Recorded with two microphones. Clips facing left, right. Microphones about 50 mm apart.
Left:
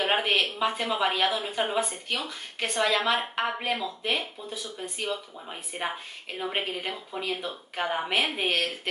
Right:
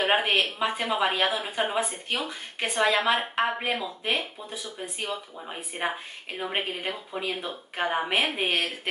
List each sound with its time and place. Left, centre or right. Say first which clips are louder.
0.0 s speech: right 1 dB; centre